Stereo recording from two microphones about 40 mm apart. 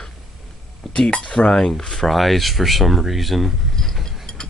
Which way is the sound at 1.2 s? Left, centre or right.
Left.